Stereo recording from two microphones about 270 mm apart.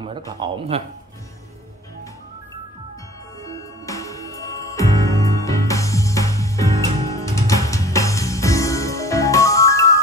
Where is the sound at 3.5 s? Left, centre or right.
Centre.